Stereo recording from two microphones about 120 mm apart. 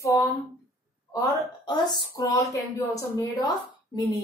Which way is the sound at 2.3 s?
25° left (ahead or behind).